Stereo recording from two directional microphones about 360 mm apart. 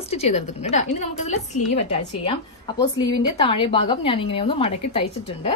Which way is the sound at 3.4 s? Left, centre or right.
Centre.